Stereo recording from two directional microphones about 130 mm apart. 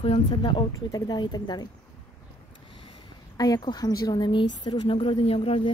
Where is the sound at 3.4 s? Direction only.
30° left (ahead or behind).